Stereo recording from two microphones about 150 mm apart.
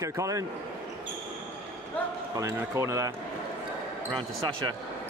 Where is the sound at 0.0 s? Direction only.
20° right (ahead or behind).